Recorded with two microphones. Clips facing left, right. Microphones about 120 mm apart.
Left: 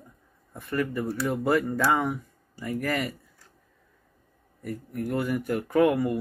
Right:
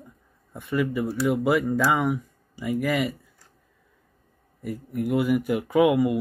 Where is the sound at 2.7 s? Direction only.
10° right (ahead or behind).